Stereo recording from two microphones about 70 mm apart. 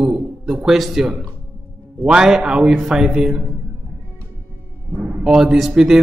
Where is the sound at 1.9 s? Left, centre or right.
Centre.